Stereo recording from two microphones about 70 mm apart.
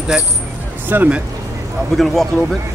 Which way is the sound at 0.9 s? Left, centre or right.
Right.